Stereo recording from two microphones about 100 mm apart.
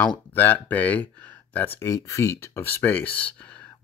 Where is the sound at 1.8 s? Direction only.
35° left (ahead or behind); by 3.3 s 15° left (ahead or behind).